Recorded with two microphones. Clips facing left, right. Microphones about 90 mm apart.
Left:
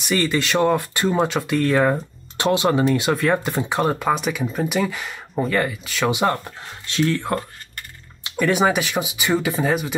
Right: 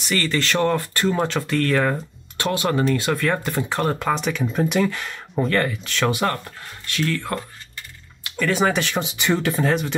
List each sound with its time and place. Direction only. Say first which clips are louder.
0.0 s speech: left 2 dB; 15° left (ahead or behind)
6.1 s speech: left 3 dB; 15° left (ahead or behind)